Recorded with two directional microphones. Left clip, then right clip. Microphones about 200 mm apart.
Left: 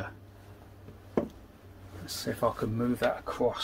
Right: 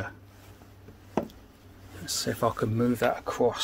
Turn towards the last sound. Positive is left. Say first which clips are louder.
# right 3 dB
turn(degrees=-60)  # may be behind; listen again after turning